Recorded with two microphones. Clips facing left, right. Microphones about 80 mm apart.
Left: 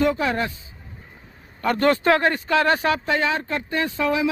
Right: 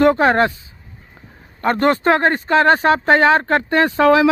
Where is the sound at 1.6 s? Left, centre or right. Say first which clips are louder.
Right 3 dB; right.